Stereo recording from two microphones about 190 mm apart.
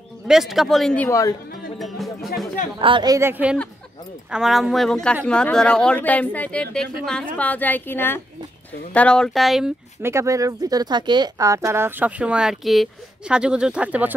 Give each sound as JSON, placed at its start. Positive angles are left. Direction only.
{"t": 0.3, "sound": "speech", "side_deg": 0}
{"t": 1.0, "sound": "speech", "side_deg": 15}
{"t": 1.8, "sound": "music", "side_deg": 0}
{"t": 2.8, "sound": "speech", "side_deg": -25}
{"t": 10.0, "sound": "speech", "side_deg": -15}